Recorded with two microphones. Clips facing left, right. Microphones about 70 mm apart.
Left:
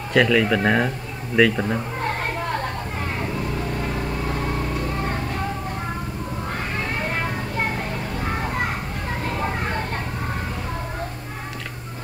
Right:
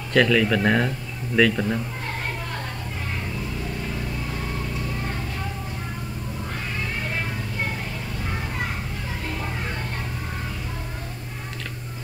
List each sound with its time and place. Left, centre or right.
0.1 s speech: centre
3.5 s vehicle: left
6.5 s children playing: left